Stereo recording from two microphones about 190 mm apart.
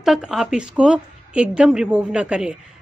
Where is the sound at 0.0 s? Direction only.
Centre (ahead or behind).